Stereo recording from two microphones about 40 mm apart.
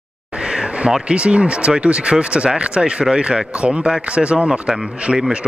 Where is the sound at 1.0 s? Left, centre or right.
Right.